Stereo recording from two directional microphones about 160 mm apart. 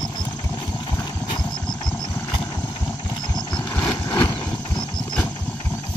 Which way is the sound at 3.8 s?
20° left (ahead or behind).